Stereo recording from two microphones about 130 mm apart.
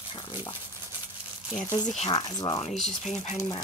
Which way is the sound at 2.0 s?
35° left (ahead or behind).